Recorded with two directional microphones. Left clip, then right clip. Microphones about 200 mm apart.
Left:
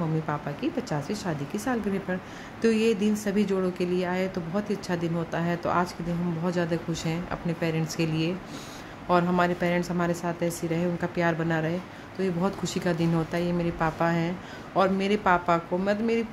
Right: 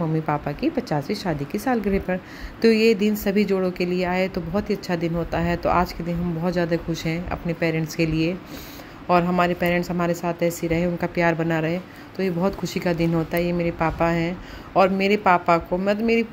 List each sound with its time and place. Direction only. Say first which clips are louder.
0.3 s a woman's voice: right 6 dB; 20° right (ahead or behind)